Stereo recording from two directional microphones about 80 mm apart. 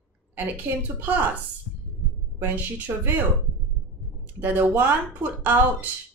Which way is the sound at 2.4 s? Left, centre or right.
Right.